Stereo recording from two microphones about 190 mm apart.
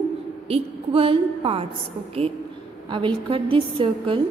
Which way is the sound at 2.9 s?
25° right (ahead or behind).